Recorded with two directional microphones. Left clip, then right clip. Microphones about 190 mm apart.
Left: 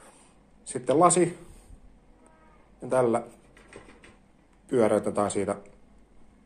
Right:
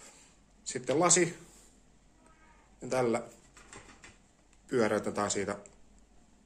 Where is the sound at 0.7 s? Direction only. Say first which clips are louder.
Left 7 dB; 5° right (ahead or behind).